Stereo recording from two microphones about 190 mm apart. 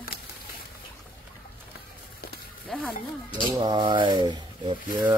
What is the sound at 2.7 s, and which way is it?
Speech, centre (ahead or behind).